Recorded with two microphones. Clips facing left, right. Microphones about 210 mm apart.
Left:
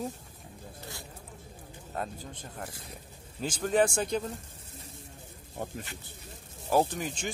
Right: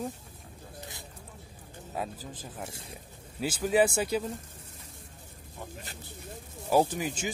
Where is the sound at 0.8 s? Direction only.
20° right (ahead or behind).